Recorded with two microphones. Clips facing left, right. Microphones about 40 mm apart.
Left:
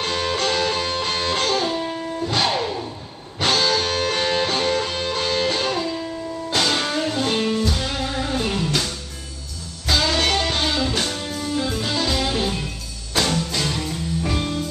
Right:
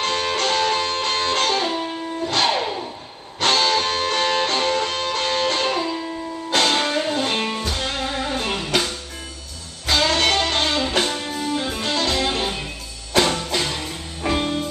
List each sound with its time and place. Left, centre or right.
0.0 s music: centre
3.3 s music: centre; by 7.7 s right
7.7 s music: centre
9.8 s music: centre
10.9 s music: right
11.8 s music: centre
12.3 s music: centre